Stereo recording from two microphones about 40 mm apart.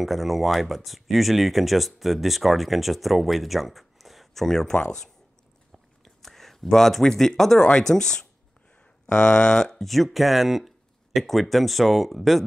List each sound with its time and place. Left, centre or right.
0.0 s speech: centre
6.0 s speech: centre
9.1 s speech: left
9.8 s speech: centre